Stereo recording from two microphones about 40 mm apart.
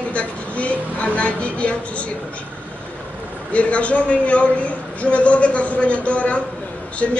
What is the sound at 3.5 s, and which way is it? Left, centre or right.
Speech, left.